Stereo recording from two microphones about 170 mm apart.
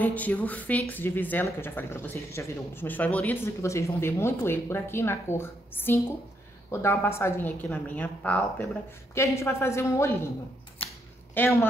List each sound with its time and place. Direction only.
0.0 s speech: 10° left (ahead or behind)
11.3 s speech: 15° left (ahead or behind)